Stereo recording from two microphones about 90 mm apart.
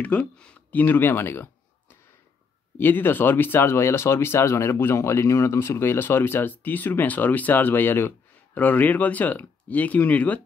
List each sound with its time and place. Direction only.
0.0 s speech: 15° left (ahead or behind)
2.8 s speech: 25° left (ahead or behind)